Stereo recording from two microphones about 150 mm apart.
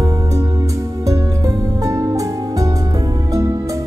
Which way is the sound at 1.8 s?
20° right (ahead or behind).